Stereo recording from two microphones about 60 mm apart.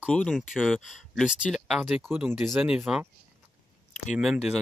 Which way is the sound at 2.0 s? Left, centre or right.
Right.